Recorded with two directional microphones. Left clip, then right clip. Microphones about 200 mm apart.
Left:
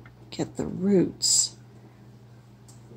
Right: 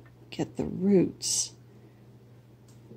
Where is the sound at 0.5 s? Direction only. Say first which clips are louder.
Left 1 dB; 25° right (ahead or behind).